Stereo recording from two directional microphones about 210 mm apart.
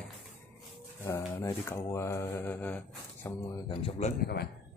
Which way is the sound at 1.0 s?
10° left (ahead or behind).